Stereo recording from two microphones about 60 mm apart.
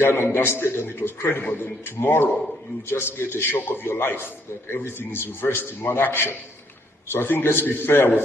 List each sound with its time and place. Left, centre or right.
0.0 s a man's voice: left